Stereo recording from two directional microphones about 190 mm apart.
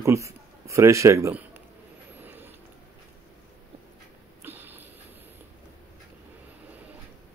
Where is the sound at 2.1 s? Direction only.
10° right (ahead or behind).